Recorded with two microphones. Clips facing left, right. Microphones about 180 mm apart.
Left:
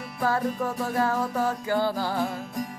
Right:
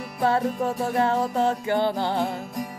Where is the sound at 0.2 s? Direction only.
25° right (ahead or behind).